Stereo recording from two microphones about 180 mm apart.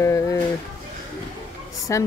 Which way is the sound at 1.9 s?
15° left (ahead or behind).